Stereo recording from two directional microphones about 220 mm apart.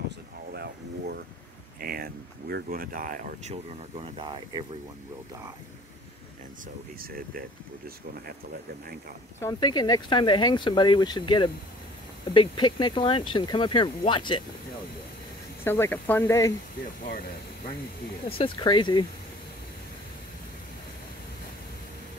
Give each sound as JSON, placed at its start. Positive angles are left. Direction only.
{"t": 1.8, "sound": "speech", "side_deg": -40}
{"t": 4.0, "sound": "speech", "side_deg": -20}
{"t": 7.0, "sound": "speech", "side_deg": -40}
{"t": 9.4, "sound": "speech", "side_deg": 20}
{"t": 15.6, "sound": "speech", "side_deg": 10}
{"t": 18.4, "sound": "speech", "side_deg": 20}